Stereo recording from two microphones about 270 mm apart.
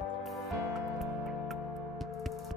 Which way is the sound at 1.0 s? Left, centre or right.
Centre.